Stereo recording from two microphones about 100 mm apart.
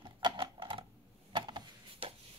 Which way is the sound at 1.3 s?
50° right (ahead or behind).